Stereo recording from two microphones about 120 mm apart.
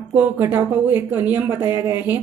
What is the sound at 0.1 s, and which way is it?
A woman's voice, 15° right (ahead or behind).